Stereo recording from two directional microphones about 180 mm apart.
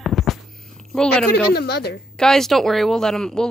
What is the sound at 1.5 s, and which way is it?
Speech, 60° left (ahead or behind).